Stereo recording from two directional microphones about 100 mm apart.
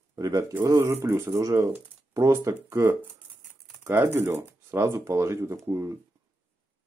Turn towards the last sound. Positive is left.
turn(degrees=-30)  # may be behind; listen again after turning